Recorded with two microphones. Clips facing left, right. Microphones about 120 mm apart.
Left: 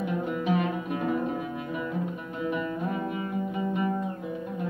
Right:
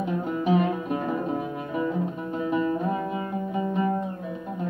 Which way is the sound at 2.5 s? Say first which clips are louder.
Right 7 dB; 30° right (ahead or behind).